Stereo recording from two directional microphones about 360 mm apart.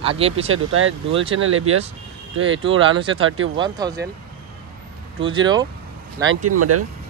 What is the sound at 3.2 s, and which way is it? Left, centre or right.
Speech, right.